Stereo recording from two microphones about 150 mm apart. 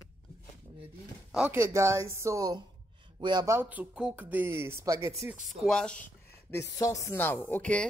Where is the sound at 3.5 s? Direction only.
10° right (ahead or behind).